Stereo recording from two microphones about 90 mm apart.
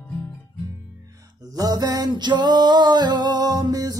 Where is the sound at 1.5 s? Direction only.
45° right (ahead or behind).